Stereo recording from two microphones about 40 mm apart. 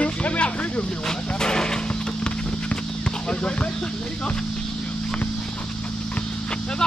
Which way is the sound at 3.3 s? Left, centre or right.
Left.